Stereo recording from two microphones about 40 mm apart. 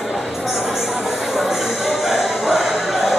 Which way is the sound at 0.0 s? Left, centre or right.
Centre.